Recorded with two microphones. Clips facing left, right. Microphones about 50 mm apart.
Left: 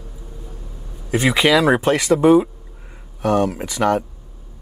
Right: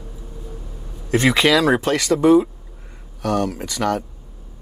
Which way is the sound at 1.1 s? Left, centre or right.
Centre.